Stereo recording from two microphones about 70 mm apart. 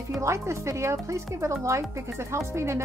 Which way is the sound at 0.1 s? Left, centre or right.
Right.